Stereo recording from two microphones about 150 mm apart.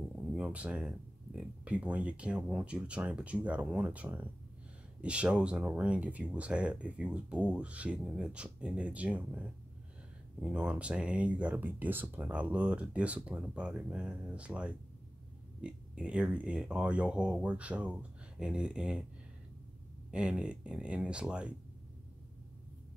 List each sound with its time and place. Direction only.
0.3 s speech: 10° right (ahead or behind)
20.1 s speech: 5° right (ahead or behind)